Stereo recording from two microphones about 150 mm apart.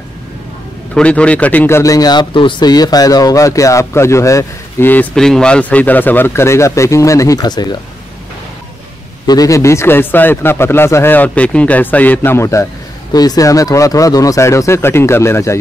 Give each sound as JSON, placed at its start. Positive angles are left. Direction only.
{"t": 0.9, "sound": "speech", "side_deg": 10}
{"t": 9.2, "sound": "a man's voice", "side_deg": 25}